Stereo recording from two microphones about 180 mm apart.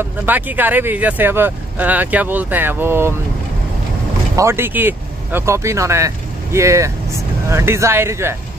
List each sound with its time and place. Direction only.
0.0 s speech: 10° right (ahead or behind)
4.4 s speech: 15° right (ahead or behind)